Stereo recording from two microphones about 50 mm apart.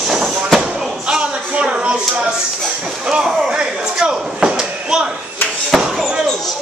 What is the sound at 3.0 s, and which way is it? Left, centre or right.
Slam, centre.